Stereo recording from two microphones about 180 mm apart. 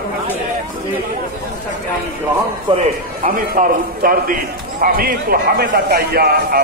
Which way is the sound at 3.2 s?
50° right (ahead or behind).